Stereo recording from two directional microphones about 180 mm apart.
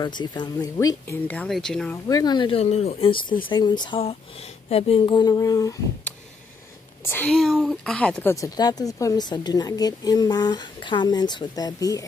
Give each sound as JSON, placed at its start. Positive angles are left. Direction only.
{"t": 0.0, "sound": "speech", "side_deg": 25}
{"t": 2.0, "sound": "a woman's voice", "side_deg": 20}
{"t": 7.1, "sound": "a woman's voice", "side_deg": 10}